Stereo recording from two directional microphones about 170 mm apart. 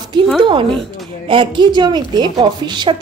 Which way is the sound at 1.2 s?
30° right (ahead or behind).